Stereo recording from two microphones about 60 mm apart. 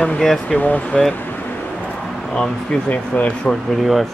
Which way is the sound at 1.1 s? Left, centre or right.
Left.